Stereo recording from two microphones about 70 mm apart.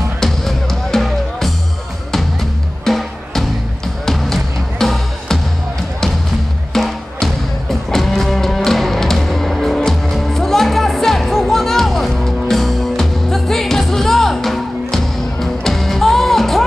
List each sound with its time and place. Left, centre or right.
0.2 s music: centre
2.8 s music: centre
6.7 s music: centre